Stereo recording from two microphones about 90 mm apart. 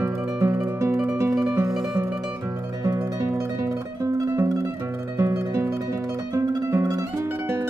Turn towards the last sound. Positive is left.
turn(degrees=-30)  # may be behind; listen again after turning